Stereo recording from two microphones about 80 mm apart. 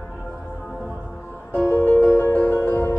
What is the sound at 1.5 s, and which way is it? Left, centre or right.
Music, left.